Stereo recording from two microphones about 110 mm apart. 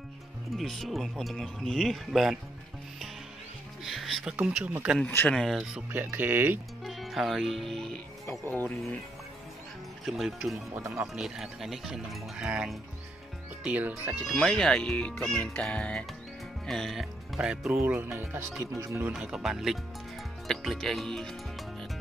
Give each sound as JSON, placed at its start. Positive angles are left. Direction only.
{"t": 0.6, "sound": "speech", "side_deg": 0}
{"t": 3.8, "sound": "speech", "side_deg": 0}
{"t": 5.0, "sound": "speech", "side_deg": 20}
{"t": 5.3, "sound": "speech", "side_deg": 0}
{"t": 5.9, "sound": "speech", "side_deg": -15}
{"t": 6.8, "sound": "speech", "side_deg": 0}
{"t": 8.3, "sound": "speech", "side_deg": 15}
{"t": 10.0, "sound": "speech", "side_deg": 0}
{"t": 10.7, "sound": "speech", "side_deg": -25}
{"t": 11.1, "sound": "speech", "side_deg": -5}
{"t": 17.7, "sound": "speech", "side_deg": -20}
{"t": 19.1, "sound": "speech", "side_deg": -5}